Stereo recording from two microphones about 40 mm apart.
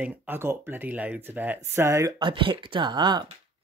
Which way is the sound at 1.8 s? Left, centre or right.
Right.